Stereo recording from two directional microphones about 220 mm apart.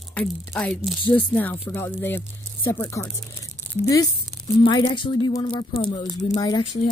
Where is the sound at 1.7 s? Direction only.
10° left (ahead or behind).